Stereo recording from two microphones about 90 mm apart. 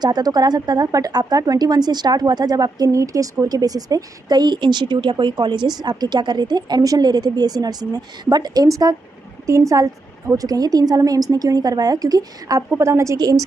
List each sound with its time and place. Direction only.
0.0 s speech: 50° right (ahead or behind); by 13.2 s 35° right (ahead or behind)